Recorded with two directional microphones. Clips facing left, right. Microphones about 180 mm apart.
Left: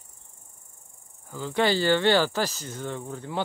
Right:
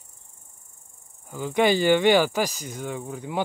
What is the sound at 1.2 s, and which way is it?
Speech, 15° right (ahead or behind).